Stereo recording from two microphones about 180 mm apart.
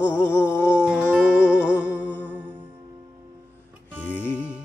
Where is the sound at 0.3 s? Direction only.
15° left (ahead or behind).